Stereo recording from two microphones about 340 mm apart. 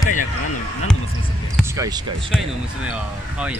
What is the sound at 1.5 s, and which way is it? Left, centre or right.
Speech, centre.